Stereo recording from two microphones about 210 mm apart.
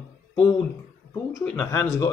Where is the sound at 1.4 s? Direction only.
10° left (ahead or behind).